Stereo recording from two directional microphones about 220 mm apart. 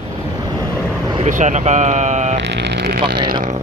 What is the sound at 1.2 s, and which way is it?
Speech, 35° right (ahead or behind).